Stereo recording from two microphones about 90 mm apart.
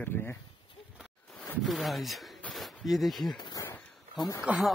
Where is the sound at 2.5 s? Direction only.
Centre (ahead or behind).